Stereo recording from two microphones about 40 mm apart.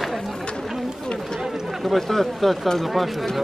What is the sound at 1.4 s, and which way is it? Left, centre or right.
Speech, centre.